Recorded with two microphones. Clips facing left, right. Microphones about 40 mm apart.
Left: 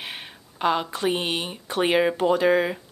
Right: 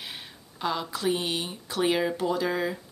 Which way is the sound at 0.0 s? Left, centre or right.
Left.